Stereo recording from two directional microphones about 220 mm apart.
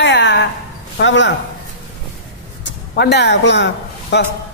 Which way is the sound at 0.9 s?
55° left (ahead or behind).